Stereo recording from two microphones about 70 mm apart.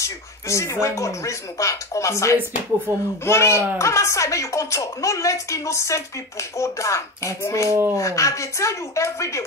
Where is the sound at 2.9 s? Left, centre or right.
Right.